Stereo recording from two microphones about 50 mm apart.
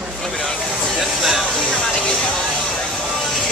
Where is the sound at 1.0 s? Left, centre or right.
Centre.